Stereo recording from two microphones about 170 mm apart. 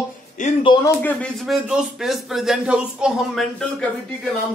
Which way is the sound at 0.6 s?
25° left (ahead or behind).